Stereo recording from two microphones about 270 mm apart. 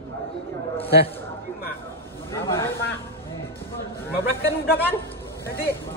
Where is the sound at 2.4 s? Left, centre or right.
Centre.